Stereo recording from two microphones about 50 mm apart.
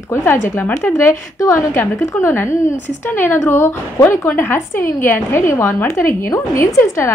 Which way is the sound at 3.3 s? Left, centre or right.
Left.